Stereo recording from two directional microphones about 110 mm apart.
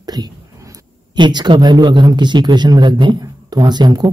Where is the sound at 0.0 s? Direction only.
40° right (ahead or behind).